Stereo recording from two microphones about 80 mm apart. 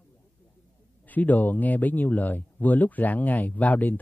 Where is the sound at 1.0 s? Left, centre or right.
Left.